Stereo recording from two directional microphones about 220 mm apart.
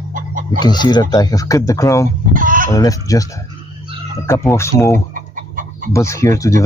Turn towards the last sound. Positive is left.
turn(degrees=15)  # may be behind; listen again after turning